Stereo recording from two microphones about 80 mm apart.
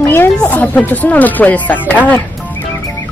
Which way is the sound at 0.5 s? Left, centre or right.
Left.